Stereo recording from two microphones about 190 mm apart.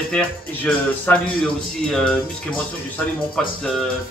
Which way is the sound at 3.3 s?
5° left (ahead or behind).